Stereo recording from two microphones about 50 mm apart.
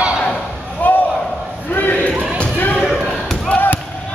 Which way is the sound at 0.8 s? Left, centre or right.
Left.